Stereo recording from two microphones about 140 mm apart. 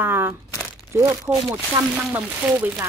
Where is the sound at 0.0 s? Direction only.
15° right (ahead or behind).